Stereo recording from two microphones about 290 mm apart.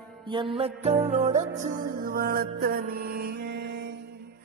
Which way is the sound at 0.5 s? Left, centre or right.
Right.